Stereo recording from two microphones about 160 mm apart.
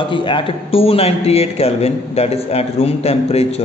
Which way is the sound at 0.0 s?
30° left (ahead or behind).